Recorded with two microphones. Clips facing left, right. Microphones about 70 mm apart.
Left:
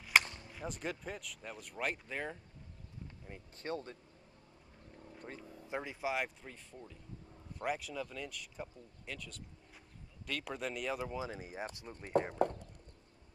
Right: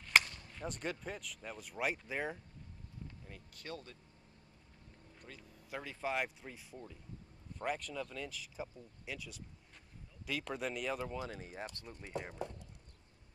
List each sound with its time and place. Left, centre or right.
0.2 s a sound: left
0.5 s speech: centre
3.3 s speech: left
5.2 s speech: left
5.8 s speech: centre
6.0 s speech: centre
7.5 s speech: centre
11.9 s speech: left
12.4 s horse: left